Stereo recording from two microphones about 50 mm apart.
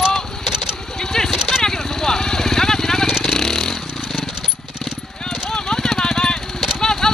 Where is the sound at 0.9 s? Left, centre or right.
Centre.